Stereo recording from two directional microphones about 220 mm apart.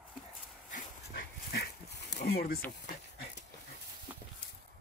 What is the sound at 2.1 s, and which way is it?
Speech, 45° left (ahead or behind).